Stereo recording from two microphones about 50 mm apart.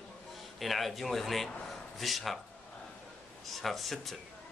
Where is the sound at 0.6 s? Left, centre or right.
Centre.